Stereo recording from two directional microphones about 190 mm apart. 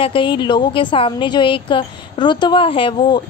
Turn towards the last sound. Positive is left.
turn(degrees=25)  # may be behind; listen again after turning